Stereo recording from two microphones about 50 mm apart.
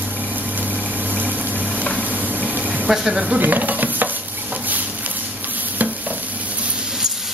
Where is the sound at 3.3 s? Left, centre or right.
Right.